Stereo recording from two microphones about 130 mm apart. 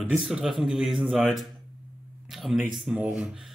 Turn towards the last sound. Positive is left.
turn(degrees=-15)  # may be behind; listen again after turning